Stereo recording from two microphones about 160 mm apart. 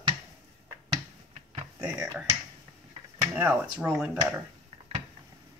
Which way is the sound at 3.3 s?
10° right (ahead or behind).